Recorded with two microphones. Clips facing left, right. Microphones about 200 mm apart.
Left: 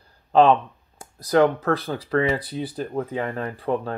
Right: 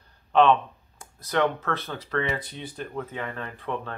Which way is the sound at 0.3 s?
35° left (ahead or behind).